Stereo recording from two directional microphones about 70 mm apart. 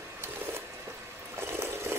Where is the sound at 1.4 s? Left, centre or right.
Right.